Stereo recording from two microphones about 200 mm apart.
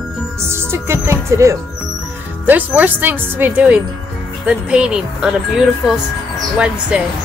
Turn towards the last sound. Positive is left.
turn(degrees=-5)  # may be behind; listen again after turning